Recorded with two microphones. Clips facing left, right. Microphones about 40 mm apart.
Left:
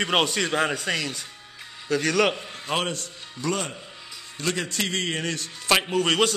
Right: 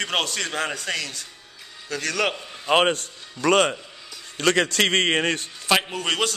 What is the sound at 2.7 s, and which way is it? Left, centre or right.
A man's voice, right.